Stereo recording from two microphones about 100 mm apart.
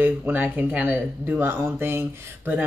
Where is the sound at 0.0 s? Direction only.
20° right (ahead or behind).